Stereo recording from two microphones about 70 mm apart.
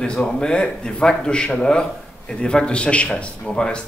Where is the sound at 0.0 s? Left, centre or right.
Centre.